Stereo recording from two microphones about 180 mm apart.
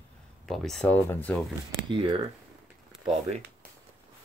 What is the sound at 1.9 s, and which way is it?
Speech, 30° right (ahead or behind).